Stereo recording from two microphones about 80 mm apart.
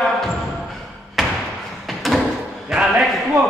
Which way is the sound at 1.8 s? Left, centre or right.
Centre.